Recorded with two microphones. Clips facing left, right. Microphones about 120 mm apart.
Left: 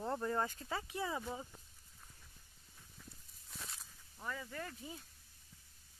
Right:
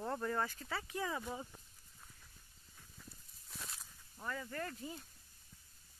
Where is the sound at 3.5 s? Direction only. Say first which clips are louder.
Even; centre (ahead or behind).